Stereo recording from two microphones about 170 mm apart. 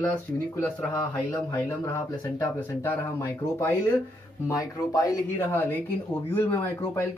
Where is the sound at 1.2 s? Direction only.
20° left (ahead or behind).